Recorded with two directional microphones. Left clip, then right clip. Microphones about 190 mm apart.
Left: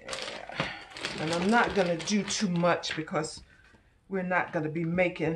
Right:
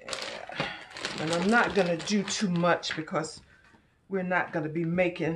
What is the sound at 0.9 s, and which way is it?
Speech, 20° right (ahead or behind).